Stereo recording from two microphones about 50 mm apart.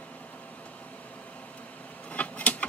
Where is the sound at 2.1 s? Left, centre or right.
Left.